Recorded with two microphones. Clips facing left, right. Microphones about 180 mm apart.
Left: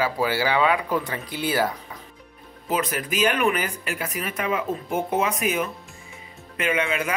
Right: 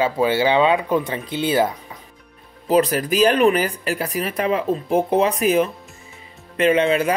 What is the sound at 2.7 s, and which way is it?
Speech, 35° right (ahead or behind).